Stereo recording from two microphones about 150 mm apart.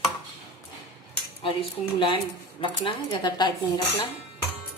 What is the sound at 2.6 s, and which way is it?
Speech, 35° left (ahead or behind).